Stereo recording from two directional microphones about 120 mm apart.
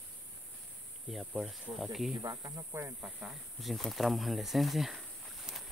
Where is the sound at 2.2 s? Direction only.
30° right (ahead or behind).